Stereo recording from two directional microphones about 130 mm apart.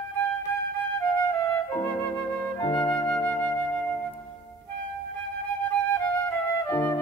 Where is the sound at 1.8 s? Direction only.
15° left (ahead or behind).